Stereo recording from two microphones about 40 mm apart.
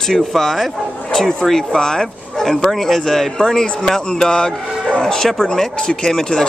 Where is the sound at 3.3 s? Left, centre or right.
Centre.